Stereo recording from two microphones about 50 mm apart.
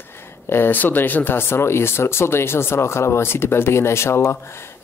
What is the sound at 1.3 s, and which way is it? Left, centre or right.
Speech, left.